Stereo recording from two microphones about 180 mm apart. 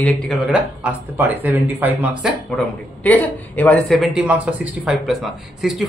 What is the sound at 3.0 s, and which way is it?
Speech, 10° left (ahead or behind).